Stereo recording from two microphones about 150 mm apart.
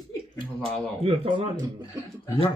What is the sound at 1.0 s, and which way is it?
Speech, 35° right (ahead or behind).